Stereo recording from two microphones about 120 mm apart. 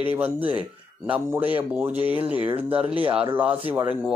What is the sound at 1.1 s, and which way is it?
A man's voice, 15° right (ahead or behind).